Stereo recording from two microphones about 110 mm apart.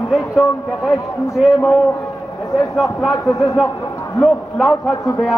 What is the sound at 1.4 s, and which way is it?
Speech, 5° right (ahead or behind).